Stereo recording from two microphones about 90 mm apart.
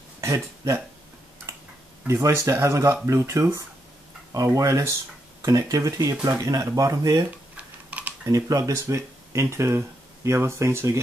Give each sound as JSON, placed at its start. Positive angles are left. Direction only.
{"t": 0.2, "sound": "speech", "side_deg": -35}
{"t": 2.0, "sound": "speech", "side_deg": -30}
{"t": 7.2, "sound": "typing", "side_deg": -15}
{"t": 8.3, "sound": "speech", "side_deg": -40}